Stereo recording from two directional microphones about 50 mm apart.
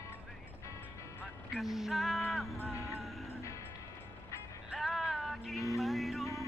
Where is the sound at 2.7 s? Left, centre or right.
Left.